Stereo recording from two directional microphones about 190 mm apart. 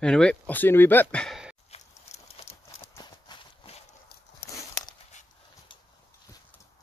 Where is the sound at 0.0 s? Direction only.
5° left (ahead or behind).